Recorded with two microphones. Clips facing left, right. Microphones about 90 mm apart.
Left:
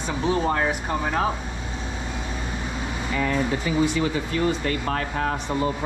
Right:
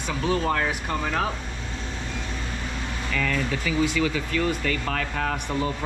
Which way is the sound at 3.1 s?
20° left (ahead or behind).